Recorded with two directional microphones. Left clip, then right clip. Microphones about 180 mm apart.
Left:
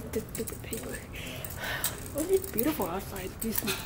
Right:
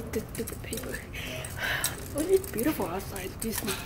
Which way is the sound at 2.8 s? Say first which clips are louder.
Right 1 dB; 15° left (ahead or behind).